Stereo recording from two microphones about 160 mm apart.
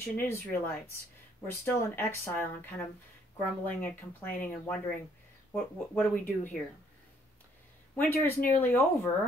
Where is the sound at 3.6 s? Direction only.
10° left (ahead or behind).